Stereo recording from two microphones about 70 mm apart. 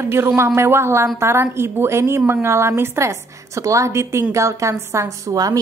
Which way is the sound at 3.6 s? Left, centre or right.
Right.